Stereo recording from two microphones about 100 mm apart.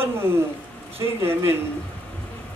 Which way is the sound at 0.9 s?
25° right (ahead or behind).